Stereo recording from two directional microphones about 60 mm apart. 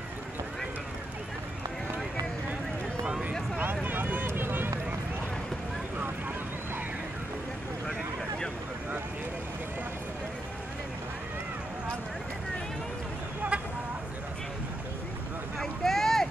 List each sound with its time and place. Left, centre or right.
3.1 s a sound: right
3.8 s vehicle: right
4.3 s run: right
13.5 s vehicle: centre
15.6 s boat: centre